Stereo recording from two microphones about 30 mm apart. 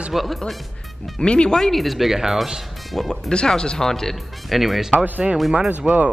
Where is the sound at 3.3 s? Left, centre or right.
Left.